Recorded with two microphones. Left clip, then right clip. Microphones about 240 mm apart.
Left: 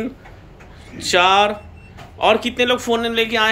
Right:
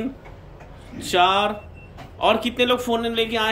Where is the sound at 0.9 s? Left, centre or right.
Centre.